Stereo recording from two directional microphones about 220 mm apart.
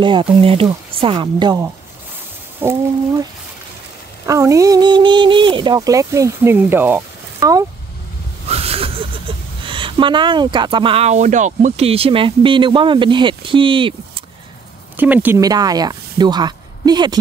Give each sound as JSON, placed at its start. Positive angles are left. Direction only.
{"t": 0.0, "sound": "speech", "side_deg": -20}
{"t": 4.3, "sound": "speech", "side_deg": -15}
{"t": 8.5, "sound": "speech", "side_deg": -25}
{"t": 15.0, "sound": "speech", "side_deg": -5}